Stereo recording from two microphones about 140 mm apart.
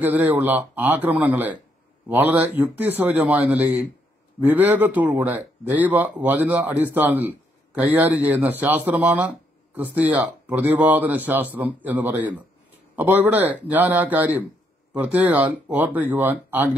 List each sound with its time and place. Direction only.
0.0 s speech: 15° right (ahead or behind)